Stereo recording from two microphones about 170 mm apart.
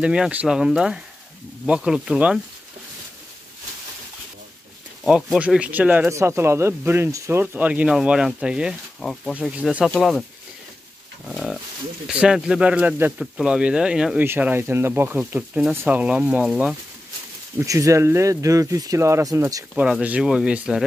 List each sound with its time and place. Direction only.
0.0 s speech: 5° right (ahead or behind)
5.0 s speech: 5° right (ahead or behind)
11.2 s pig: centre (ahead or behind)
12.1 s speech: 5° right (ahead or behind)
17.6 s speech: 20° right (ahead or behind)
19.7 s speech: 5° right (ahead or behind)